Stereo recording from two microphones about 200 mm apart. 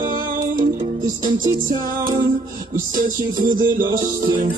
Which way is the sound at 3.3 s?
20° right (ahead or behind).